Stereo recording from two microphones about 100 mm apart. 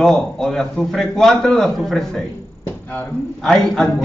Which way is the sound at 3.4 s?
5° left (ahead or behind).